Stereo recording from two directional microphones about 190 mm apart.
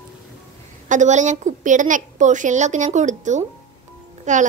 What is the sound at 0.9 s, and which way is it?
A woman's voice, 40° right (ahead or behind).